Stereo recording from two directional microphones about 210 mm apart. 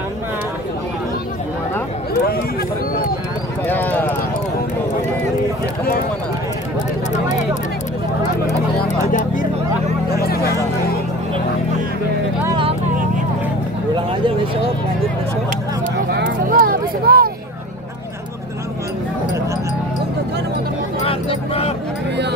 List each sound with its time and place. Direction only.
3.6 s clip-clop: 10° left (ahead or behind)
8.8 s vehicle: 35° left (ahead or behind)
10.1 s music: 45° left (ahead or behind)
12.4 s vehicle: 25° right (ahead or behind)
16.1 s vehicle: 50° right (ahead or behind)
21.0 s a sound: 25° left (ahead or behind)